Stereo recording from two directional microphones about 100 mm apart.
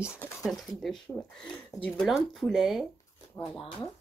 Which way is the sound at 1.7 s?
35° left (ahead or behind).